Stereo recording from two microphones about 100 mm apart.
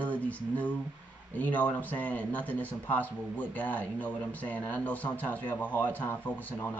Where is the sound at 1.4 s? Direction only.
15° left (ahead or behind).